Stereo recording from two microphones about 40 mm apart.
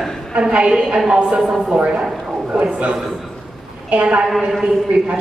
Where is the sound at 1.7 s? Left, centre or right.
Right.